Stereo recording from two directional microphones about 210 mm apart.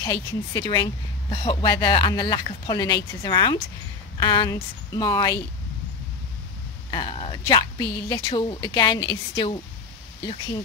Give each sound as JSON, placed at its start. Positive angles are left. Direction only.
{"t": 0.0, "sound": "speech", "side_deg": 20}
{"t": 6.9, "sound": "speech", "side_deg": 25}